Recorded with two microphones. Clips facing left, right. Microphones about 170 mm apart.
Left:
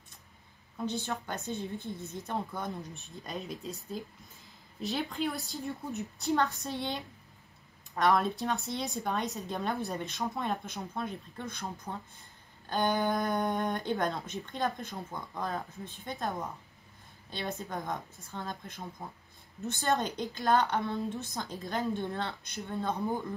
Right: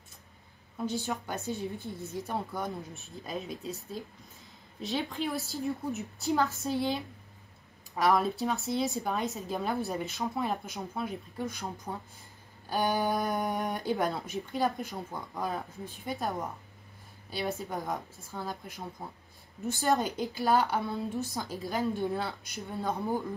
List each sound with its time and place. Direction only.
1.0 s a woman's voice: 5° right (ahead or behind)